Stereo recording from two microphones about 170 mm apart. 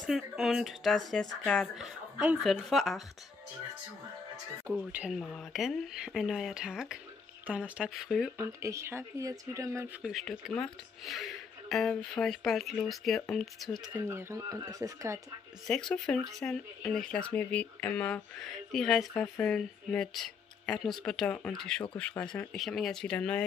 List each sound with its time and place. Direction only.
0.0 s speech: centre (ahead or behind)
4.7 s speech: 15° right (ahead or behind)
5.2 s speech: 5° left (ahead or behind)
8.4 s speech: 15° right (ahead or behind)
10.0 s speech: centre (ahead or behind)
13.9 s speech: 15° right (ahead or behind)
15.6 s speech: 5° left (ahead or behind)